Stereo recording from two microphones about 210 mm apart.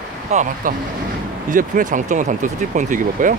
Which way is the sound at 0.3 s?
35° right (ahead or behind).